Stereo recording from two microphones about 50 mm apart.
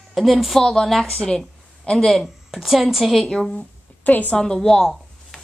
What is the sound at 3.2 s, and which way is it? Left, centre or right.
Speech, centre.